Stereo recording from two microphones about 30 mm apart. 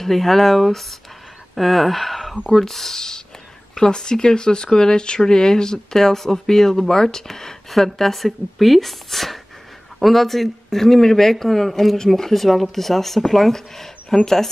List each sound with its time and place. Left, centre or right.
0.0 s speech: centre
3.7 s speech: left